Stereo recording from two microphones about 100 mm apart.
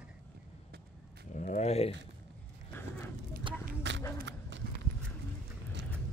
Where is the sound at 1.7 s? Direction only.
90° left.